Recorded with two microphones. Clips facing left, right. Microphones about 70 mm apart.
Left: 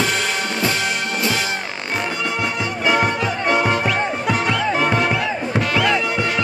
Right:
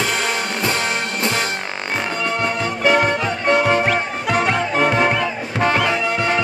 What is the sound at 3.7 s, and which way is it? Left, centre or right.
Music, right.